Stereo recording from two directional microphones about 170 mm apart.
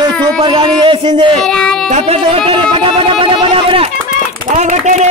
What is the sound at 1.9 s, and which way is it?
Speech, 35° right (ahead or behind).